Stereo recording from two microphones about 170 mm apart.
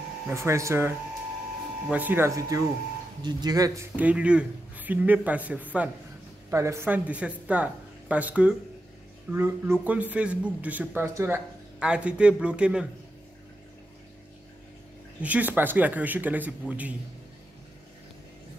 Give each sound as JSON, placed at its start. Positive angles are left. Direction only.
{"t": 0.3, "sound": "a man's voice", "side_deg": -15}
{"t": 3.9, "sound": "a man's voice", "side_deg": -10}
{"t": 15.2, "sound": "a man's voice", "side_deg": -10}